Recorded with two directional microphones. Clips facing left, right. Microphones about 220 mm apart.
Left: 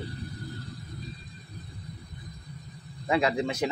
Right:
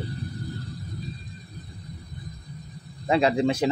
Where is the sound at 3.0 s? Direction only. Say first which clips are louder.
Right 5 dB; 30° right (ahead or behind).